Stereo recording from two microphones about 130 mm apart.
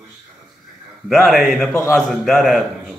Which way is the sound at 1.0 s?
Centre (ahead or behind).